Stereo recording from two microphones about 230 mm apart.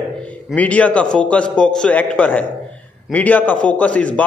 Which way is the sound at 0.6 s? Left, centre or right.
Centre.